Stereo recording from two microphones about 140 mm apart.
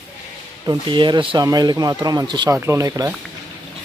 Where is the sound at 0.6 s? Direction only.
35° right (ahead or behind).